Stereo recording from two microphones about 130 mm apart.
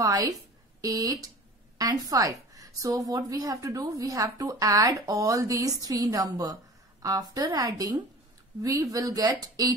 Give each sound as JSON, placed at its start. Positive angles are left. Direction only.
{"t": 0.0, "sound": "a woman's voice", "side_deg": -30}